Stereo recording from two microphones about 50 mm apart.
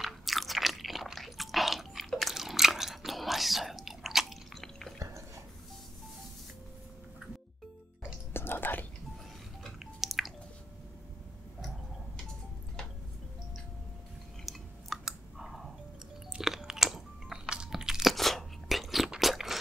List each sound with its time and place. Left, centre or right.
0.0 s chewing: centre
4.9 s drip: right
8.3 s whispering: left
9.9 s drip: centre
14.4 s chewing: centre
17.5 s crunch: centre
18.1 s crunch: centre